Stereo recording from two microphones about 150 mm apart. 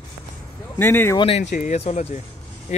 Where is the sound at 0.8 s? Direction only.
15° left (ahead or behind).